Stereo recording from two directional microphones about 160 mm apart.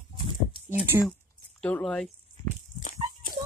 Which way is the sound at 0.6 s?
15° right (ahead or behind).